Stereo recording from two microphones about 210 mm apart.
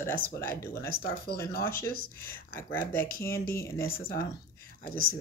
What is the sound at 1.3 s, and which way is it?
Speech, 50° left (ahead or behind).